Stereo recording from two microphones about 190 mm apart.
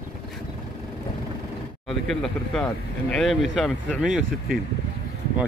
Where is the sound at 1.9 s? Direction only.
Centre (ahead or behind).